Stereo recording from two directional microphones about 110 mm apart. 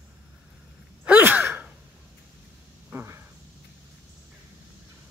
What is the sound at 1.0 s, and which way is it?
Sigh, 15° right (ahead or behind).